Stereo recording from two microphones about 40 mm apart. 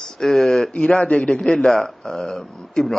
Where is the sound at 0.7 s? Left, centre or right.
Left.